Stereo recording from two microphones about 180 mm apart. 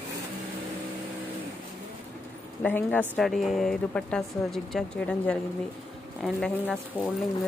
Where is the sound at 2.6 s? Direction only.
10° left (ahead or behind).